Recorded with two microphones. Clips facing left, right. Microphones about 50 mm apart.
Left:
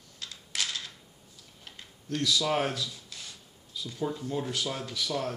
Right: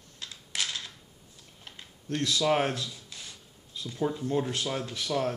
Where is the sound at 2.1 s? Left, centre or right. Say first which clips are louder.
Right 2 dB; right.